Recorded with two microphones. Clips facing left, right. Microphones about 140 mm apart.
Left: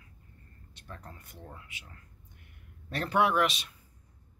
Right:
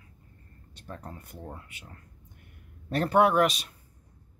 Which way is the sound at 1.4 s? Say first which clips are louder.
Right 3 dB; 35° right (ahead or behind).